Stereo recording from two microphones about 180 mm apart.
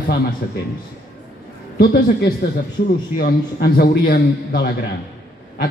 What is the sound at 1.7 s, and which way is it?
A man's voice, 60° left (ahead or behind).